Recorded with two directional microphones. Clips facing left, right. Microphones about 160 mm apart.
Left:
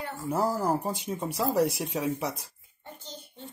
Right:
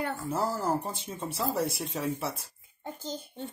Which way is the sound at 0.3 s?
10° left (ahead or behind).